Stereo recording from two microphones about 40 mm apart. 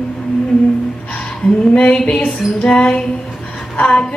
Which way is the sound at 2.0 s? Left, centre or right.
Centre.